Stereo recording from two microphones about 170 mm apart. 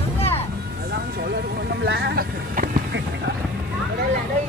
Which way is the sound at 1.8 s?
70° right (ahead or behind).